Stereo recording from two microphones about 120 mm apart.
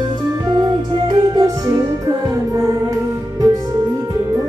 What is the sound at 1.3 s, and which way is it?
Music, 30° right (ahead or behind).